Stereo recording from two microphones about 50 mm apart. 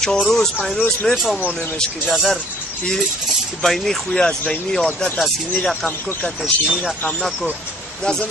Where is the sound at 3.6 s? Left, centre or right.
Centre; by 4.6 s left.